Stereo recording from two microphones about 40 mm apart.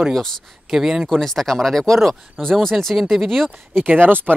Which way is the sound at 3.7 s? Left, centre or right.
Right.